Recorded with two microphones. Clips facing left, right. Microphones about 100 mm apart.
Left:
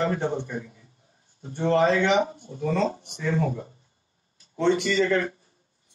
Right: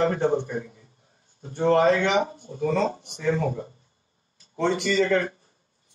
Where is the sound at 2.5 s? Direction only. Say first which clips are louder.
Right 2 dB; 50° right (ahead or behind).